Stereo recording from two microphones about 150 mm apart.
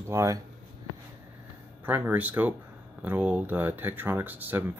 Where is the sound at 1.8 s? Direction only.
10° right (ahead or behind).